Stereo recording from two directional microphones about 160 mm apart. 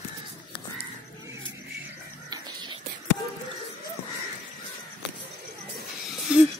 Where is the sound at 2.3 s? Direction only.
25° right (ahead or behind).